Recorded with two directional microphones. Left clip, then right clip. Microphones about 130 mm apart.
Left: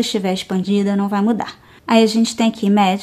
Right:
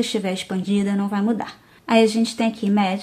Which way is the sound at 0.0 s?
30° left (ahead or behind).